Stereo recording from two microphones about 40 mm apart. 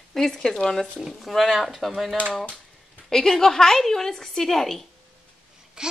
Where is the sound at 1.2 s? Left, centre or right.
Centre.